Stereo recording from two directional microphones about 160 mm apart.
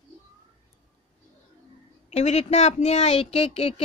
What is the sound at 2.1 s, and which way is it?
A woman's voice, 40° left (ahead or behind).